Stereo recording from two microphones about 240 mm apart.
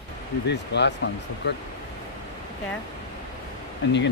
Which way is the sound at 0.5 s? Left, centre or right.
Left.